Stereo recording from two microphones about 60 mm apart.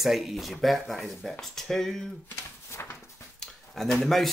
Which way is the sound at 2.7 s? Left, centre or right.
Left.